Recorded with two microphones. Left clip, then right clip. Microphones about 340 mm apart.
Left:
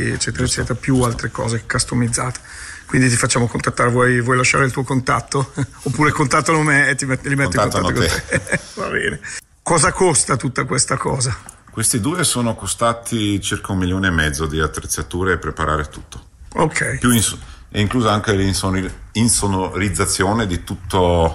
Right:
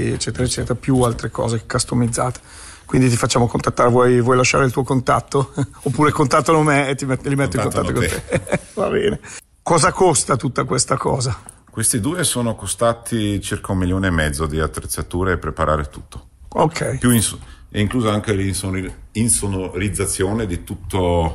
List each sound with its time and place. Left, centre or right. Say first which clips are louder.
0.0 s speech: left 1 dB; centre
7.5 s a man's voice: left 3 dB; centre
8.3 s speech: left 1 dB; centre
13.7 s speech: left 1 dB; right
16.5 s speech: even; centre